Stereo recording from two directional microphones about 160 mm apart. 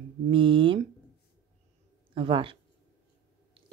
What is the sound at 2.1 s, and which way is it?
Speech, 30° right (ahead or behind).